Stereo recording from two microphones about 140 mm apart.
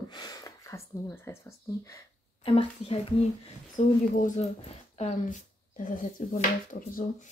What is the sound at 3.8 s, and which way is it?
Speech, 60° left (ahead or behind).